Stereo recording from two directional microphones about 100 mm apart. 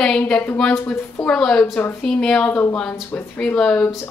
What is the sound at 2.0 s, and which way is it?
A woman's voice, 10° left (ahead or behind).